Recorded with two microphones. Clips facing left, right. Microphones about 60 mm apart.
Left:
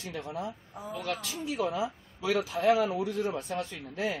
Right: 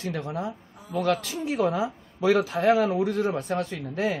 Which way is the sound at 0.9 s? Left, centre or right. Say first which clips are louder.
Right 10 dB; right.